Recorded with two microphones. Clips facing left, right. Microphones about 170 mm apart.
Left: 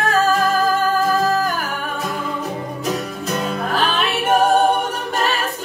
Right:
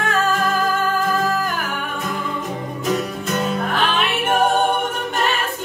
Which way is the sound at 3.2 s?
40° left (ahead or behind).